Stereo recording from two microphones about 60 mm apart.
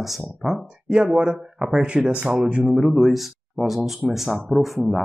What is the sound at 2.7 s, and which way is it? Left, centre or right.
Speech, centre.